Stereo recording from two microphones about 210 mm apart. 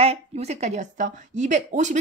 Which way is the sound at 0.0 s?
30° right (ahead or behind).